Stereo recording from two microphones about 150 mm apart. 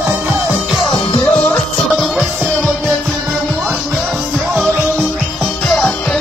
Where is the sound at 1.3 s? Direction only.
10° left (ahead or behind).